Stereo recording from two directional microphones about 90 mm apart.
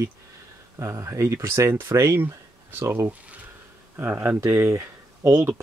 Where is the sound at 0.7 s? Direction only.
30° right (ahead or behind).